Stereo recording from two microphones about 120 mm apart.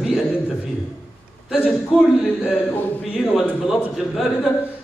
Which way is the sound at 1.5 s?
5° right (ahead or behind).